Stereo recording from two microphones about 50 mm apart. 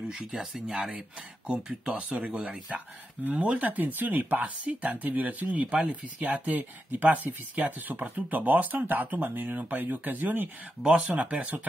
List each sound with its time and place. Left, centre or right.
0.1 s speech: centre
1.5 s speech: right
6.2 s speech: right
11.1 s speech: right